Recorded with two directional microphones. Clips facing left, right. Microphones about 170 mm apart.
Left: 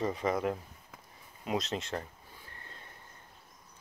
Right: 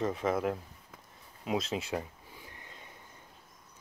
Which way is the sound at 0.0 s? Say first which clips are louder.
Right 1 dB; centre (ahead or behind).